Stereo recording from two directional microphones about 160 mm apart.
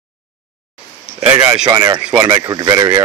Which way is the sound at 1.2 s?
10° right (ahead or behind).